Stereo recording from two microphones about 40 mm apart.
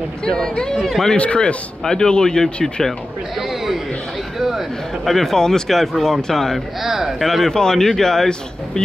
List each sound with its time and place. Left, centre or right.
0.2 s a man's voice: centre
0.7 s speech: centre
1.1 s a man's voice: left
1.9 s a man's voice: centre
3.3 s chatter: centre
4.4 s a sound: centre
5.0 s a man's voice: centre
6.8 s speech: centre
7.2 s speech: centre
7.5 s a man's voice: centre